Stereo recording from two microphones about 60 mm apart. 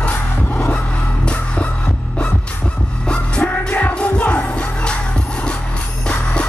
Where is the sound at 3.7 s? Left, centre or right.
Left.